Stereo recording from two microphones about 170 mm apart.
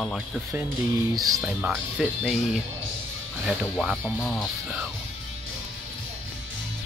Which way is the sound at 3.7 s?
Centre (ahead or behind).